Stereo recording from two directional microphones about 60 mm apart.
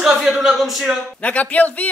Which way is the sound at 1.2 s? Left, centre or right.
Left.